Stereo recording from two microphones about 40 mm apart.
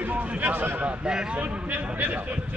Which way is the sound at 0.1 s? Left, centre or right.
Right.